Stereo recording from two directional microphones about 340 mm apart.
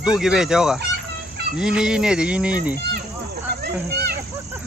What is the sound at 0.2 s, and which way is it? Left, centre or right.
Speech, centre.